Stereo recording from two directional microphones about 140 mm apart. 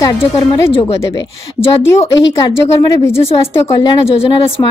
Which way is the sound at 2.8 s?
25° left (ahead or behind).